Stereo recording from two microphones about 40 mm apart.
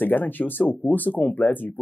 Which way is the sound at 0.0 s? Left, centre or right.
Left.